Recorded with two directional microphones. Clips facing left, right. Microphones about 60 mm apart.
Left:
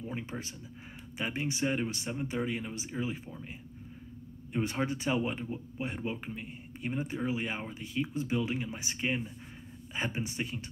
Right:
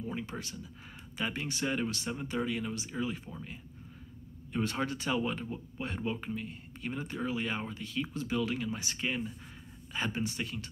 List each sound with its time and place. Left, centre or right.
0.0 s speech: left
4.5 s speech: left